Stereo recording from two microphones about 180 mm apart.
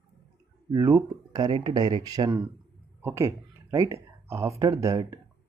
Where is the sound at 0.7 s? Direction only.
20° right (ahead or behind).